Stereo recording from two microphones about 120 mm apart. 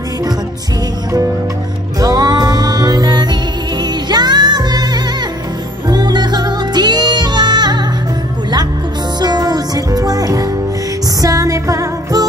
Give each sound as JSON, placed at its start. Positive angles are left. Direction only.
{"t": 2.0, "sound": "music", "side_deg": -35}
{"t": 9.2, "sound": "music", "side_deg": -35}